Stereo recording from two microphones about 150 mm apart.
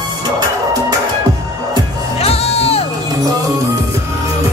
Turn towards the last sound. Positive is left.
turn(degrees=40)  # may be behind; listen again after turning